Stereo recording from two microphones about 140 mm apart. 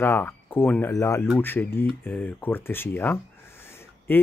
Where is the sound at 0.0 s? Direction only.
15° left (ahead or behind).